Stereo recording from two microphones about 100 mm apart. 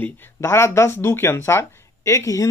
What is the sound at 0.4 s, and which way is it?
Speech, 25° left (ahead or behind).